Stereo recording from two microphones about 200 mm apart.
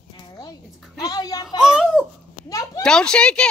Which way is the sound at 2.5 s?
15° left (ahead or behind).